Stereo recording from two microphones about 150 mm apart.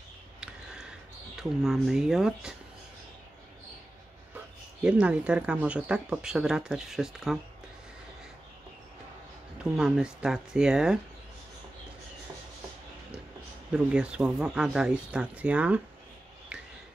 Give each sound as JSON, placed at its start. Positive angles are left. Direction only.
{"t": 0.4, "sound": "a sound", "side_deg": -5}
{"t": 4.8, "sound": "speech", "side_deg": -10}
{"t": 9.6, "sound": "speech", "side_deg": -5}
{"t": 13.7, "sound": "speech", "side_deg": -5}